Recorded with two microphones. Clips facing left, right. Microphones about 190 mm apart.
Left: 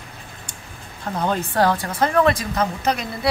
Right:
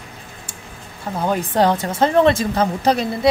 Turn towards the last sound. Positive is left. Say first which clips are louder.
# right 5 dB
turn(degrees=-30)  # may be behind; listen again after turning